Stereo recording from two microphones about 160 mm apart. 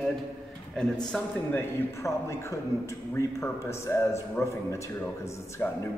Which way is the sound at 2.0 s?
20° left (ahead or behind).